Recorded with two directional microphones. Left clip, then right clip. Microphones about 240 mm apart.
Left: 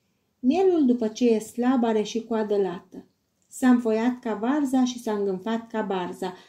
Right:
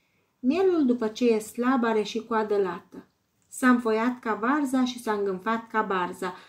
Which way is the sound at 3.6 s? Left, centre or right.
Right.